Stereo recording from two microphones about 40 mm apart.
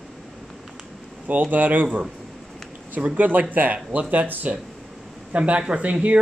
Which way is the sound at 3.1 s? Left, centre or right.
Right.